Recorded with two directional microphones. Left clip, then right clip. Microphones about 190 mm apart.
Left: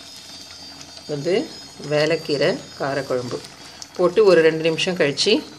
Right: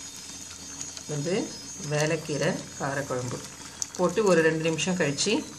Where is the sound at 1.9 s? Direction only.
35° left (ahead or behind).